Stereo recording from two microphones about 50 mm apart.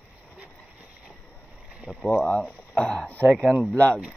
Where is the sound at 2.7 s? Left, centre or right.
Centre.